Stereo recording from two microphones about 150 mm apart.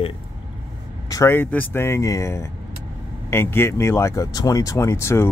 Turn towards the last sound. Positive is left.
turn(degrees=20)  # may be behind; listen again after turning